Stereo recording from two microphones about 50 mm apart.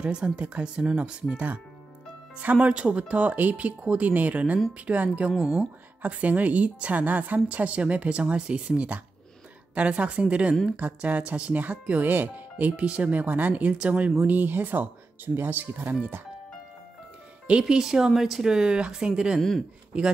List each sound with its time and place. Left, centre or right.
0.0 s a woman's voice: right
1.3 s a woman's voice: right
12.0 s speech: right
12.8 s a woman's voice: right
14.2 s speech: right
17.5 s speech: centre